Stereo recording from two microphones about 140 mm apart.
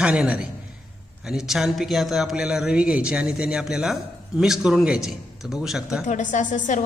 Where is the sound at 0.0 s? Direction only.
5° right (ahead or behind).